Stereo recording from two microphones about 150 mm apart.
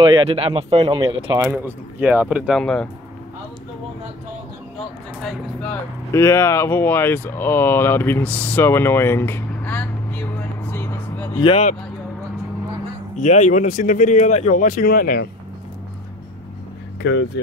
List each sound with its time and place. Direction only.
0.0 s speech: 35° right (ahead or behind)
1.4 s speech: 15° right (ahead or behind); by 2.9 s 5° left (ahead or behind)
5.2 s speech: 10° left (ahead or behind)
11.3 s speech: 35° left (ahead or behind)
13.2 s speech: 50° left (ahead or behind); by 15.2 s 80° left